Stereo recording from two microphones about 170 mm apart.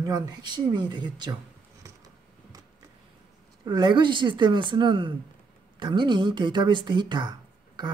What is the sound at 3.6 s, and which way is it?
Speech, 25° right (ahead or behind).